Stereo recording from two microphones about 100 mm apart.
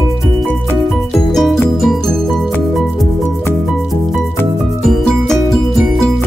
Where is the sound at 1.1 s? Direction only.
5° left (ahead or behind).